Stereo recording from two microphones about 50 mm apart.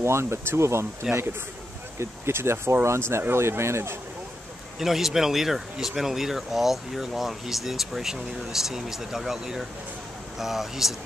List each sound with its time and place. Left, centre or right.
0.0 s speech: right
2.0 s speech: right
4.7 s speech: centre